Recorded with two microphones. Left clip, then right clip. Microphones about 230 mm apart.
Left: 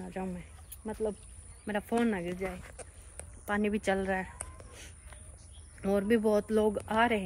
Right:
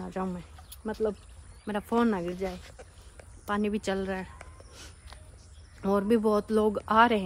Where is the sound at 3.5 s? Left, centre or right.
Centre.